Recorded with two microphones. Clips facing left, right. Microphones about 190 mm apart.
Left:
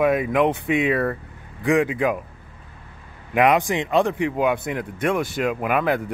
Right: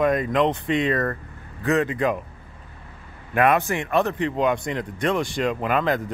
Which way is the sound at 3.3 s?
15° left (ahead or behind).